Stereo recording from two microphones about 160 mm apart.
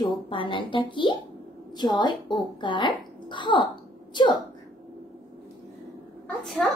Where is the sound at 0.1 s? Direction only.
30° left (ahead or behind).